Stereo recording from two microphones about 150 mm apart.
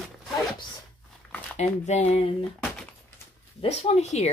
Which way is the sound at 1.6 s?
50° left (ahead or behind).